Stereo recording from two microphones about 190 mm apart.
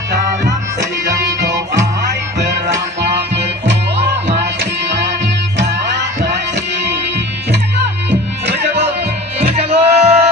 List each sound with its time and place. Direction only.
4.3 s music: 65° right (ahead or behind)
8.1 s music: 65° right (ahead or behind)
9.5 s music: 30° right (ahead or behind)